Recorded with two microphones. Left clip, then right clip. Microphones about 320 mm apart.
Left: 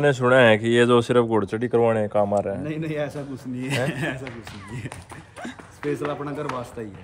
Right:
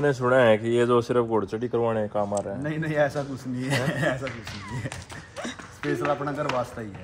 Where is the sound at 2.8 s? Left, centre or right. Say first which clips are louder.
Right 4 dB; centre.